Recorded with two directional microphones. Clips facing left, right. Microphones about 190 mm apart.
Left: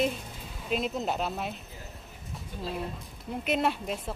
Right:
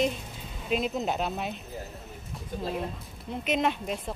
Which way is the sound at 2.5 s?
45° right (ahead or behind).